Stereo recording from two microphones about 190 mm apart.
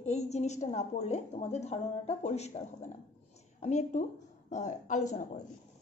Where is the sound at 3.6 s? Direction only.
40° left (ahead or behind).